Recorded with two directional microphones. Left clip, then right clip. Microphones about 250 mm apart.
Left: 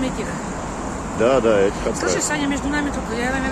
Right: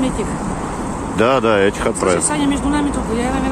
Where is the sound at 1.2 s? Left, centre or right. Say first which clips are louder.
Right 2 dB; right.